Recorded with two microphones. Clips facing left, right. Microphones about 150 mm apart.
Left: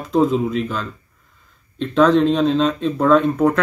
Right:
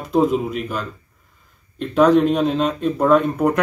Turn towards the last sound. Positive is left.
turn(degrees=-10)  # may be behind; listen again after turning